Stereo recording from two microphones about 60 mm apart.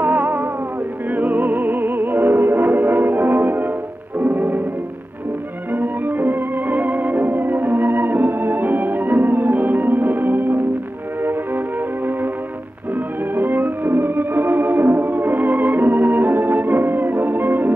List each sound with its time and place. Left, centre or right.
0.0 s music: right
5.7 s music: right
13.3 s music: right